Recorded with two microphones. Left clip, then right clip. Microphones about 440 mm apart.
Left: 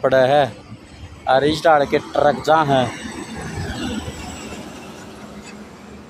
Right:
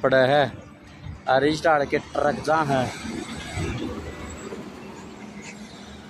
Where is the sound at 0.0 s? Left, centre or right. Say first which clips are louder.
Left 4 dB; right.